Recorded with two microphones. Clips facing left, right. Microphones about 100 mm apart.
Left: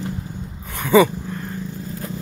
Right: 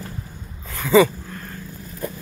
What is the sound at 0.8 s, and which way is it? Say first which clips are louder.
Dog: left 1 dB; 15° left (ahead or behind).